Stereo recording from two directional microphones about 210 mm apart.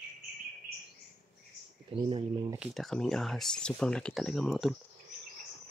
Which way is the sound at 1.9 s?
25° right (ahead or behind).